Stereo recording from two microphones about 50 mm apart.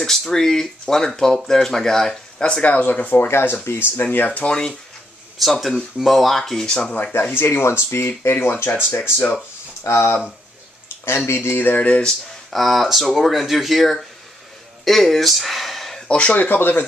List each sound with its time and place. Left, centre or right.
0.0 s speech: centre
2.7 s speech: left
3.2 s speech: left
4.0 s speech: left
4.4 s speech: centre
5.4 s speech: centre
6.6 s speech: centre
7.0 s speech: left
7.3 s speech: left
11.2 s speech: left
11.8 s speech: left
12.4 s speech: centre
16.1 s speech: centre
16.3 s speech: left